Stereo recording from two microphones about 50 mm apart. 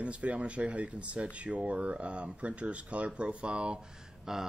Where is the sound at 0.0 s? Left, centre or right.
Right.